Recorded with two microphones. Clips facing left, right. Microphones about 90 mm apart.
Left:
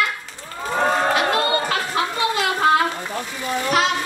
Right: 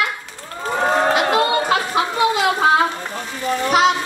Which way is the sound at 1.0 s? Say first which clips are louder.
Right 3 dB; 20° right (ahead or behind).